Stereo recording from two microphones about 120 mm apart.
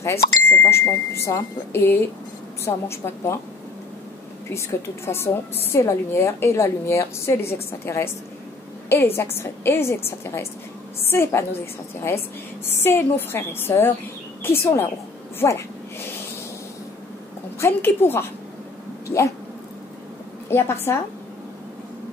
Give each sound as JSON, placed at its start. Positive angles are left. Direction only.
{"t": 0.0, "sound": "a woman's voice", "side_deg": 25}
{"t": 4.5, "sound": "a woman's voice", "side_deg": 20}
{"t": 12.6, "sound": "a woman's voice", "side_deg": 20}
{"t": 17.6, "sound": "a woman's voice", "side_deg": 20}
{"t": 20.4, "sound": "a woman's voice", "side_deg": 20}